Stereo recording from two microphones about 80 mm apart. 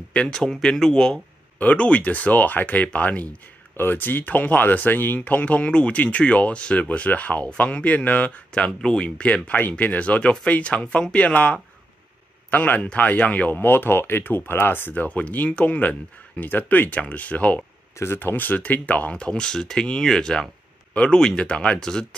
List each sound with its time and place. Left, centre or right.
0.1 s speech: centre
17.9 s speech: left; by 22.0 s centre